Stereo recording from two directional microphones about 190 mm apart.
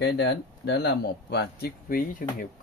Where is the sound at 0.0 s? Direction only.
65° left (ahead or behind).